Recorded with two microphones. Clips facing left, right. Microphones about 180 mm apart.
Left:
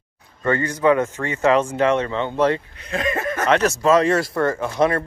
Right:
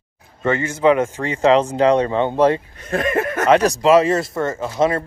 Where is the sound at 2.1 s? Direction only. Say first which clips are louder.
Right 4 dB; 20° right (ahead or behind).